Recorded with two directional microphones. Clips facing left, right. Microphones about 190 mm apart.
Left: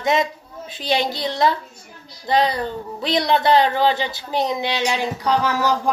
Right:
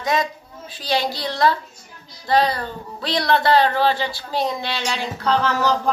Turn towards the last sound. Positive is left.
turn(degrees=10)  # may be behind; listen again after turning